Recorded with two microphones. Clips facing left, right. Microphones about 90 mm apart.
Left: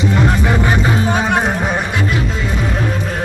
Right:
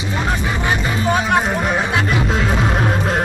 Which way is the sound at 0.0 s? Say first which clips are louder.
Left 6 dB; 65° left (ahead or behind).